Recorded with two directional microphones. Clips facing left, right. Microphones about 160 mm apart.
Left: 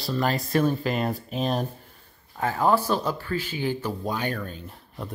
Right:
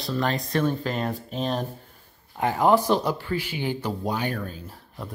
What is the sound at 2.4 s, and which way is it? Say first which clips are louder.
Speech: right 2 dB; 15° right (ahead or behind).